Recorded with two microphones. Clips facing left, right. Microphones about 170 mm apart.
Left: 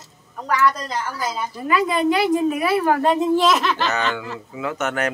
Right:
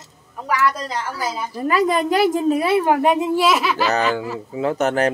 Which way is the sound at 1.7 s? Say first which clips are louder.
Right 1 dB; 40° right (ahead or behind).